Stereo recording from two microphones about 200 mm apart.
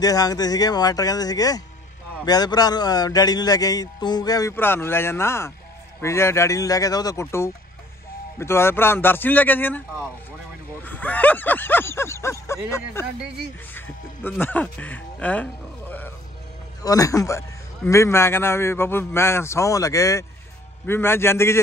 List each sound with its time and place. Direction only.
0.0 s a man's voice: 20° left (ahead or behind)
13.7 s a sound: 10° left (ahead or behind)
16.8 s a man's voice: 15° left (ahead or behind)